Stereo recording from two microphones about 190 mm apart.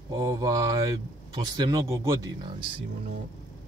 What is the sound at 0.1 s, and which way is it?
Mantra, 20° right (ahead or behind).